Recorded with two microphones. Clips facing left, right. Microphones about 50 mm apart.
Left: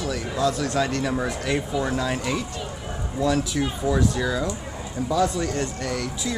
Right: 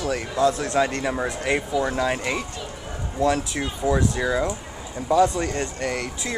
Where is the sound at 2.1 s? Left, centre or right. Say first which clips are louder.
Even; right.